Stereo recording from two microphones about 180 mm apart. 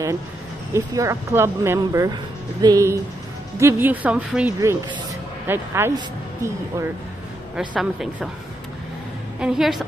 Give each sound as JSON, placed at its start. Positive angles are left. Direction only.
{"t": 0.7, "sound": "speech", "side_deg": -15}
{"t": 7.5, "sound": "a man's voice", "side_deg": -5}
{"t": 9.4, "sound": "a man's voice", "side_deg": -5}